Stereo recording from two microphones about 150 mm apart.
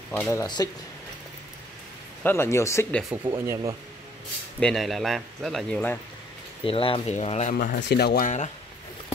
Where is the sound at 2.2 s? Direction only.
15° left (ahead or behind).